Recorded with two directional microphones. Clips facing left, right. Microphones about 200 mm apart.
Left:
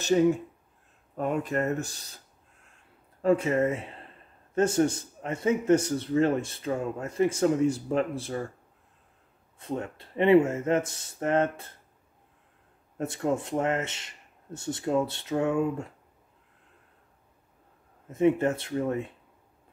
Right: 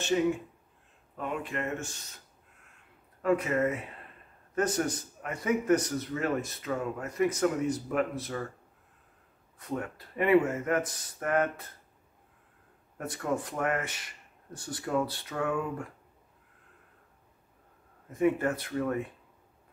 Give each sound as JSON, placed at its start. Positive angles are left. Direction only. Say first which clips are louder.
{"t": 0.1, "sound": "speech", "louder": "left 5 dB", "side_deg": 40}
{"t": 3.2, "sound": "a man's voice", "louder": "left 3 dB", "side_deg": 30}
{"t": 9.6, "sound": "a man's voice", "louder": "left 2 dB", "side_deg": 25}
{"t": 12.9, "sound": "a man's voice", "louder": "left 4 dB", "side_deg": 25}
{"t": 18.0, "sound": "a man's voice", "louder": "left 4 dB", "side_deg": 25}